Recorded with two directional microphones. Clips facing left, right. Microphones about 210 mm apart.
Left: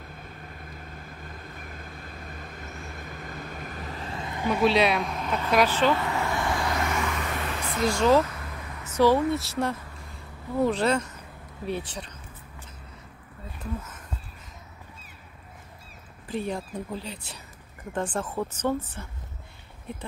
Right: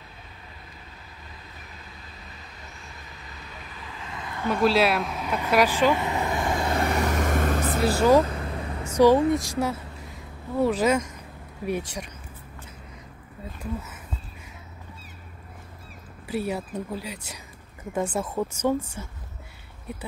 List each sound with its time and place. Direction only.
0.7 s vehicle: 50° left (ahead or behind)
4.5 s a sound: centre (ahead or behind); by 7.8 s 45° right (ahead or behind)
7.9 s speech: 10° right (ahead or behind)
8.2 s vehicle: 30° right (ahead or behind)
8.8 s speech: 15° right (ahead or behind)
13.6 s a sound: 10° right (ahead or behind)
16.3 s speech: 10° right (ahead or behind)